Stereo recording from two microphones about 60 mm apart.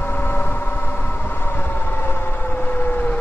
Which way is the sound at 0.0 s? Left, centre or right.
Left.